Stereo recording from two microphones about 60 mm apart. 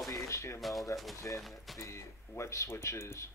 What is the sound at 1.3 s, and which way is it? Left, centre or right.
Speech, left.